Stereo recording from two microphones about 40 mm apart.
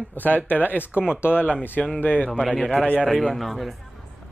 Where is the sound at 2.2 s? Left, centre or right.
Left.